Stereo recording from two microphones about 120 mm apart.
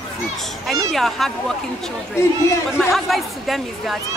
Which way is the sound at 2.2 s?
20° left (ahead or behind).